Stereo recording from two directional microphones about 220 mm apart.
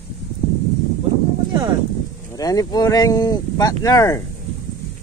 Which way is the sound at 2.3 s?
15° left (ahead or behind).